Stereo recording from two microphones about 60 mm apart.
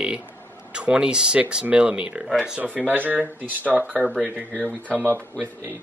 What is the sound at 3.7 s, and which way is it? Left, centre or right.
Speech, centre.